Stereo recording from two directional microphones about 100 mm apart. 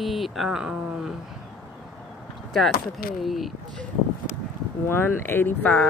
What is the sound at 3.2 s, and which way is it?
Speech, centre (ahead or behind).